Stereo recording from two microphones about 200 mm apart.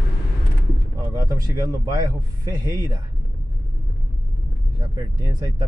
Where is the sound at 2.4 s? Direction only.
20° right (ahead or behind).